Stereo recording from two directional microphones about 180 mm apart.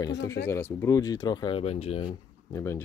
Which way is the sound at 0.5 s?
15° left (ahead or behind).